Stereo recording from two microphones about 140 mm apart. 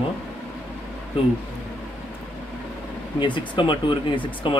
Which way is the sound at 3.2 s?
35° left (ahead or behind).